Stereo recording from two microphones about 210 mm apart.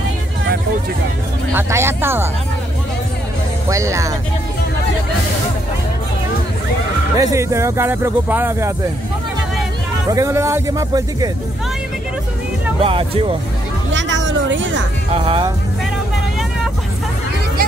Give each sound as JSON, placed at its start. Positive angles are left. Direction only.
{"t": 1.5, "sound": "speech", "side_deg": -10}
{"t": 3.6, "sound": "speech", "side_deg": -15}
{"t": 7.2, "sound": "speech", "side_deg": -15}
{"t": 10.0, "sound": "speech", "side_deg": -15}
{"t": 12.8, "sound": "speech", "side_deg": -25}
{"t": 13.9, "sound": "cat", "side_deg": -60}
{"t": 15.1, "sound": "speech", "side_deg": -25}